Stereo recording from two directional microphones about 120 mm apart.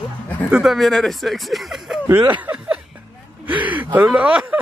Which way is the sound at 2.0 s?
20° right (ahead or behind).